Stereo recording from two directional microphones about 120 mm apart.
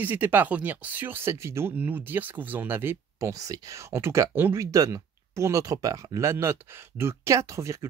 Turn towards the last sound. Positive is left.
turn(degrees=-25)  # may be behind; listen again after turning